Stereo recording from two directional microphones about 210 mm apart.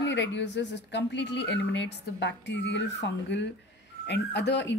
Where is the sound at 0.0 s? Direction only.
60° left (ahead or behind).